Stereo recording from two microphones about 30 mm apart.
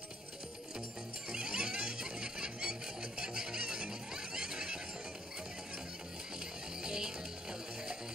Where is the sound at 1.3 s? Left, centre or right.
Right.